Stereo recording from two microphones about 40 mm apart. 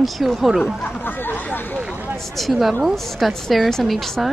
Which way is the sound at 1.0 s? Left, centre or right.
Left.